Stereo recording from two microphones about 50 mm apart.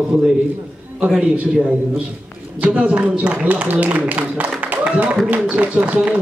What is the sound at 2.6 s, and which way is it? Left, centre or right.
A man's voice, right.